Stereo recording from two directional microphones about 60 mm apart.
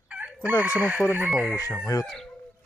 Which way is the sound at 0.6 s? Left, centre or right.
Right.